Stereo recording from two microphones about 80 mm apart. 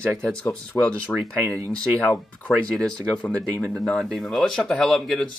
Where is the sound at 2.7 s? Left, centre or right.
Centre.